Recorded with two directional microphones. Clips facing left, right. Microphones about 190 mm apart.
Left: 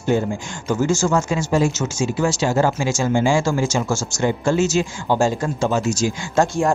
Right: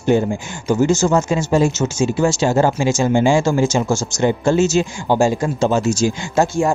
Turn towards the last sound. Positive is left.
turn(degrees=-5)  # may be behind; listen again after turning